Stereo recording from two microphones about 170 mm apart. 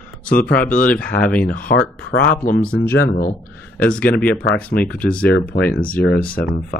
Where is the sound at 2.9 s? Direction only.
70° left (ahead or behind).